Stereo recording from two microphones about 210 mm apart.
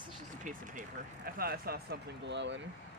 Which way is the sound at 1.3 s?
45° right (ahead or behind).